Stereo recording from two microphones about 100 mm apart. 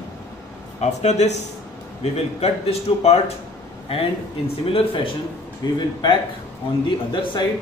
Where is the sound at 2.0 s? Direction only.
90° left.